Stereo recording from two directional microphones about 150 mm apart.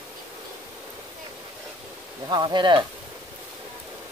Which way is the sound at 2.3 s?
30° right (ahead or behind).